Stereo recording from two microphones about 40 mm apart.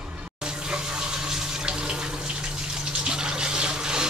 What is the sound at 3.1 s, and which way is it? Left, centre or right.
Water, centre.